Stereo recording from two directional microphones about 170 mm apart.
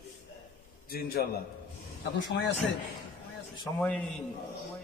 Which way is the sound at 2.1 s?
90° left.